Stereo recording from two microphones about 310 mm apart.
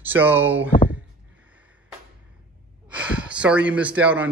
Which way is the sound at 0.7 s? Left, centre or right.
Left.